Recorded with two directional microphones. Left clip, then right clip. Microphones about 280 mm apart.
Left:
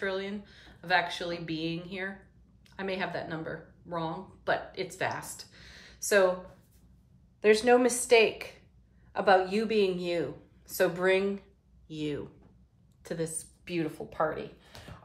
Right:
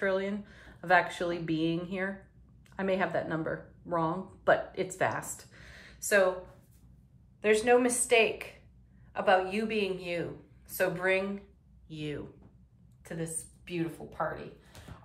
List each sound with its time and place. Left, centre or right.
0.0 s a woman's voice: centre
7.4 s a woman's voice: centre